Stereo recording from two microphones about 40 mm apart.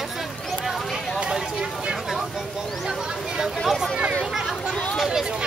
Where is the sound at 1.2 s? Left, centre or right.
Centre.